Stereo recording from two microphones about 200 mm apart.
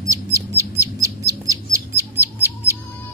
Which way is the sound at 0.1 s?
15° right (ahead or behind).